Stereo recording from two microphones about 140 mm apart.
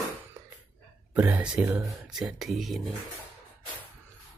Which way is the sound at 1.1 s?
10° right (ahead or behind).